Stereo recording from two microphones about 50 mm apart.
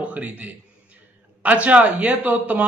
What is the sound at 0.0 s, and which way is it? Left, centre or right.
A man's voice, right.